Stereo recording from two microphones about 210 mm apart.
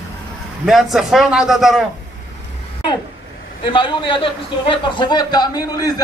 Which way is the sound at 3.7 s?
25° left (ahead or behind).